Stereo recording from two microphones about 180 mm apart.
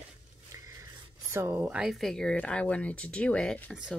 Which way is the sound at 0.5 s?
20° right (ahead or behind).